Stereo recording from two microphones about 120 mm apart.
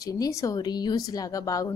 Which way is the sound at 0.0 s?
30° left (ahead or behind).